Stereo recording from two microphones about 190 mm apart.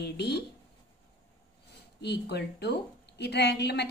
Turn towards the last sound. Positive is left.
turn(degrees=60)  # may be behind; listen again after turning